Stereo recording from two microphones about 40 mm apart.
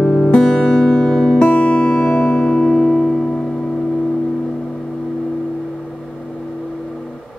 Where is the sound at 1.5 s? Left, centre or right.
Left; by 3.3 s centre.